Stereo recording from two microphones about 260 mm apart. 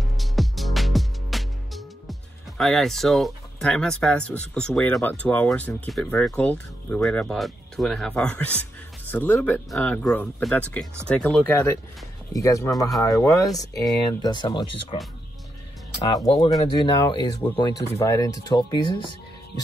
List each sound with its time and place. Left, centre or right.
0.0 s music: centre
5.2 s speech: centre
16.0 s speech: centre